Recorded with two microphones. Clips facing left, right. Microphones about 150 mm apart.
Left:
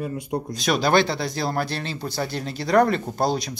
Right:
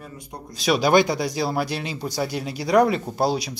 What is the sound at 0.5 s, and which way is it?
Speech, 5° right (ahead or behind).